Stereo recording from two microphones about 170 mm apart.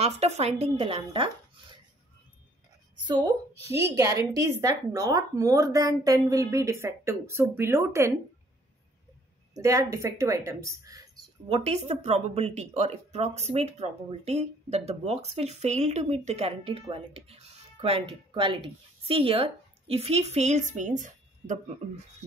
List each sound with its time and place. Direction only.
0.0 s speech: 40° right (ahead or behind)
3.1 s speech: 25° right (ahead or behind)
9.6 s a woman's voice: 20° right (ahead or behind)
11.4 s speech: 35° right (ahead or behind)